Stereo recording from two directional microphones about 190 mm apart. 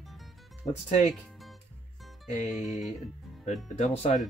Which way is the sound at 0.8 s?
35° left (ahead or behind).